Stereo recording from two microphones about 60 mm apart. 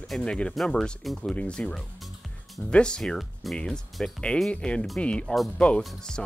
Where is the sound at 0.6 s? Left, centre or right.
Centre.